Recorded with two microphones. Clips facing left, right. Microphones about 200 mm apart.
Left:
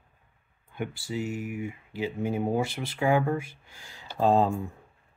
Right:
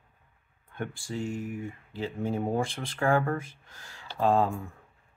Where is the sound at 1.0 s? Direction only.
5° left (ahead or behind).